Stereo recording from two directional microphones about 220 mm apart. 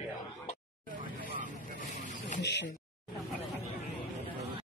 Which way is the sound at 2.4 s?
50° left (ahead or behind).